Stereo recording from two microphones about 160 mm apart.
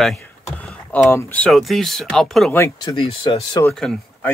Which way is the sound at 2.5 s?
20° left (ahead or behind).